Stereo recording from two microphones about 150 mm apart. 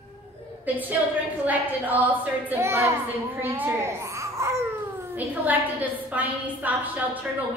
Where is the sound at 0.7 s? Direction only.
10° right (ahead or behind).